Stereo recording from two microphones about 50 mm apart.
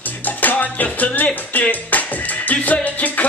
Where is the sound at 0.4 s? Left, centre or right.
Left.